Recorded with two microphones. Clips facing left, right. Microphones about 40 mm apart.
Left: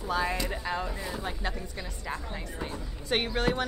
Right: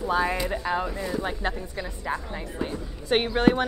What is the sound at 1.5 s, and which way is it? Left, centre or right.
A woman's voice, centre.